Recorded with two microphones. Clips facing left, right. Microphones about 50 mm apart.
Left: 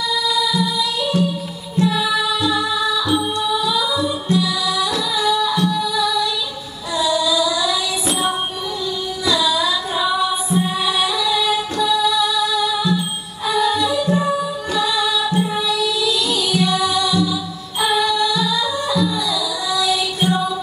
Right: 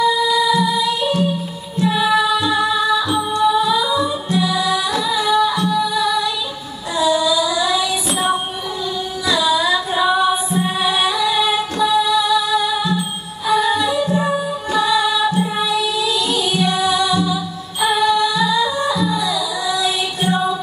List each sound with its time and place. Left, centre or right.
0.0 s music: right
7.0 s child singing: right
9.3 s music: right